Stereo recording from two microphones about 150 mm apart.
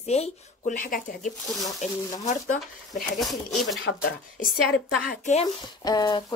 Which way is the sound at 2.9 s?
Centre (ahead or behind).